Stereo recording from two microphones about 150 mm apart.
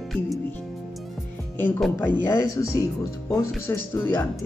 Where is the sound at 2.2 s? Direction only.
15° left (ahead or behind).